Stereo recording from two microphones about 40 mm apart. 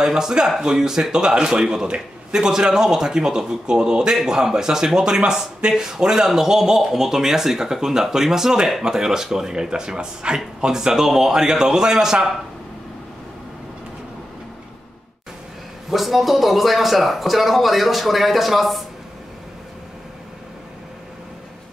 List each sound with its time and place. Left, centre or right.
0.0 s speech: centre
15.9 s speech: centre